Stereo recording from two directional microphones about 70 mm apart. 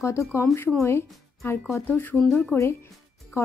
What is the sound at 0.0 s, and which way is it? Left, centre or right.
Speech, left.